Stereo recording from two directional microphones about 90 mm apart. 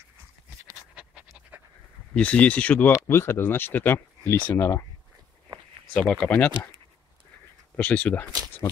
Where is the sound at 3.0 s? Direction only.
30° left (ahead or behind).